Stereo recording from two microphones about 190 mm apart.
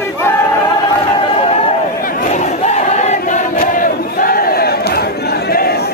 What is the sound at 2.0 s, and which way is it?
Battle cry, 35° left (ahead or behind).